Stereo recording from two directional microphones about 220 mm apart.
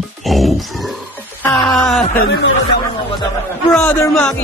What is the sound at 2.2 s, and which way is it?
Speech, 50° left (ahead or behind).